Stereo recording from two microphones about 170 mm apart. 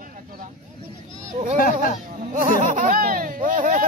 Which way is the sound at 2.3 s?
50° right (ahead or behind).